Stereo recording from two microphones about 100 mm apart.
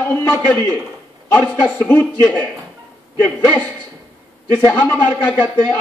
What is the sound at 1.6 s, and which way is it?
Speech, 15° left (ahead or behind).